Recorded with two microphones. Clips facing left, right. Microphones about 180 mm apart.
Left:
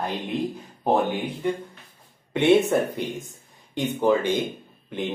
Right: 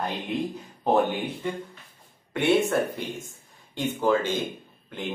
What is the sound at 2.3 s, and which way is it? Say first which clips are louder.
Speech: left 4 dB; 20° left (ahead or behind).